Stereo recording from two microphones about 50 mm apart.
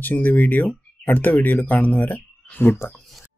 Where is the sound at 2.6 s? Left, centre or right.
Left.